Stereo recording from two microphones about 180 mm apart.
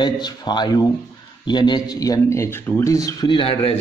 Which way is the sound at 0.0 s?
25° left (ahead or behind).